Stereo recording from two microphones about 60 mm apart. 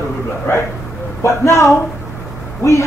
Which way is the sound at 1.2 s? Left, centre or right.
Left.